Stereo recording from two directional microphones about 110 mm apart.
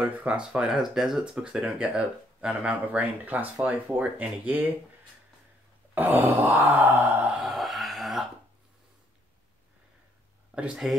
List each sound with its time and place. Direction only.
0.0 s speech: 10° right (ahead or behind)
5.9 s speech: 15° right (ahead or behind)
7.3 s a sound: centre (ahead or behind)
10.5 s speech: 5° right (ahead or behind)